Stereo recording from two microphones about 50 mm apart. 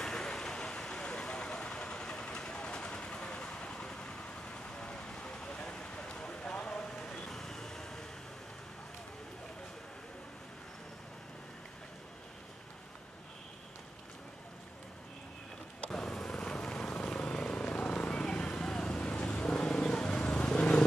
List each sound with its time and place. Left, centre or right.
0.0 s vehicle: centre
15.9 s vehicle: centre